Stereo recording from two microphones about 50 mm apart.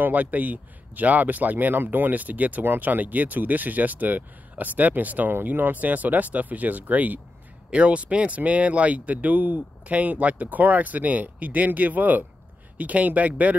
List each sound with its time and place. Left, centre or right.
0.0 s speech: right